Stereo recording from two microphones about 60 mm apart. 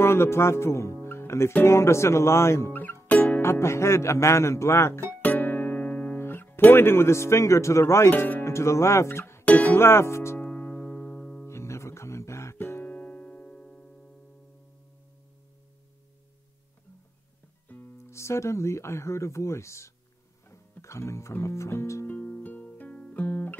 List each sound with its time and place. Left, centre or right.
0.0 s speech: left
1.0 s music: left
1.7 s speech: left
2.7 s music: left
3.4 s speech: left
5.2 s music: left
8.2 s speech: left
8.5 s speech: left
9.4 s speech: left
10.4 s music: left
11.4 s music: left
12.8 s music: left
17.6 s speech: left
22.0 s music: left